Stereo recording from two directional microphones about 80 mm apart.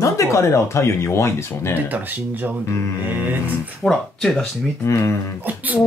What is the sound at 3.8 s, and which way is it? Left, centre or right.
Speech, centre.